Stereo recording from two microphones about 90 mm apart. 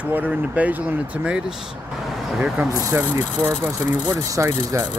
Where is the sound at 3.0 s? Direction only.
20° right (ahead or behind).